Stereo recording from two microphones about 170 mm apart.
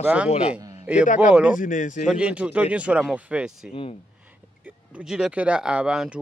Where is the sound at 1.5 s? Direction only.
50° left (ahead or behind).